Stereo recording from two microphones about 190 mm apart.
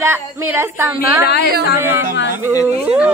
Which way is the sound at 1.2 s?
60° left (ahead or behind).